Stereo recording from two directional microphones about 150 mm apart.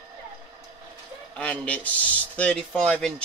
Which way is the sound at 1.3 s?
10° left (ahead or behind).